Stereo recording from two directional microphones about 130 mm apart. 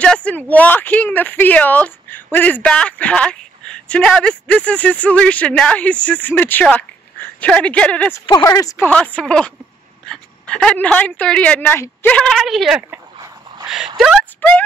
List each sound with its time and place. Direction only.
0.0 s a woman's voice: 10° left (ahead or behind)
8.4 s speech: 25° left (ahead or behind)
8.8 s speech: 10° left (ahead or behind)
13.9 s a sound: centre (ahead or behind)
14.4 s speech: 15° left (ahead or behind)